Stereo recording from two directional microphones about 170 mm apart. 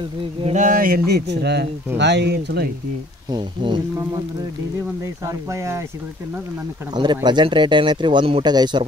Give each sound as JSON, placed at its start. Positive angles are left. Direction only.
{"t": 0.5, "sound": "a sound", "side_deg": -50}
{"t": 2.0, "sound": "speech", "side_deg": -90}
{"t": 3.3, "sound": "speech", "side_deg": -30}
{"t": 5.2, "sound": "speech", "side_deg": -20}
{"t": 6.9, "sound": "speech", "side_deg": -25}